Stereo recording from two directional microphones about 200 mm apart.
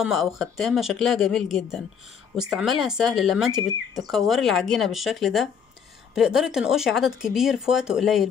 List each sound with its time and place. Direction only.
0.0 s speech: centre (ahead or behind)